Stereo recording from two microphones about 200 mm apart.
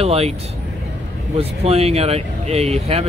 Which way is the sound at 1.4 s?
30° right (ahead or behind).